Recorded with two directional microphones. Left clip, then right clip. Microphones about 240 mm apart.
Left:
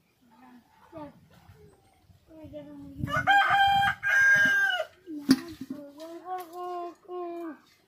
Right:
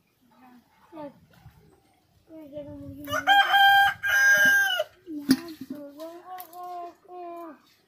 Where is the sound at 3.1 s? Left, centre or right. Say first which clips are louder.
Right 2 dB; right.